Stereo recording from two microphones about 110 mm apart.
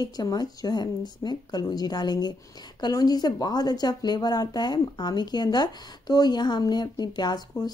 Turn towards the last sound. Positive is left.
turn(degrees=40)  # may be behind; listen again after turning